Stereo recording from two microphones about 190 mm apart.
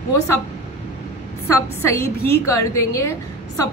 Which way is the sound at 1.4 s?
15° left (ahead or behind).